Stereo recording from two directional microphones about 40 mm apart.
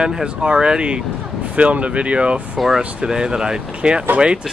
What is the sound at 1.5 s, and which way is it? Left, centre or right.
Speech, right.